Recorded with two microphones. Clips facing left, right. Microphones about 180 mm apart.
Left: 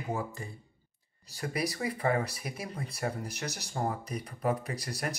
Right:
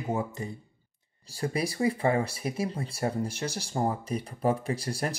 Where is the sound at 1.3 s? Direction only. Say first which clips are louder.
Right 3 dB; 30° right (ahead or behind).